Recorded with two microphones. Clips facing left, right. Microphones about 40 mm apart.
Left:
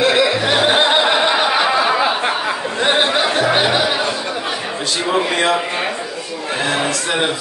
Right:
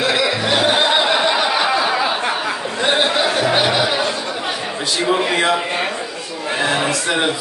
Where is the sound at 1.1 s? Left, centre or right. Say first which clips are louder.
Left 1 dB; centre.